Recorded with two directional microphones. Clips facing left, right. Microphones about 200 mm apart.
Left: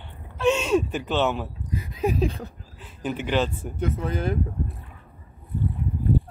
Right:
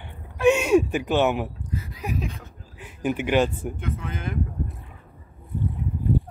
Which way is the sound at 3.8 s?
35° left (ahead or behind).